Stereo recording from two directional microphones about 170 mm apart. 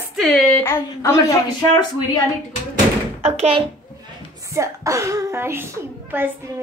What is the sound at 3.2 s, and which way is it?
Speech, 35° right (ahead or behind).